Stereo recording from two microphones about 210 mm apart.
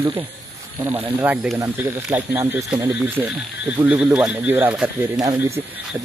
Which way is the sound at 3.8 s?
10° right (ahead or behind).